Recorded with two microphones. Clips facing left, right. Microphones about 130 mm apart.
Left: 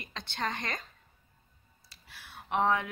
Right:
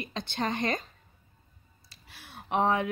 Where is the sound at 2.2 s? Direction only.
25° right (ahead or behind).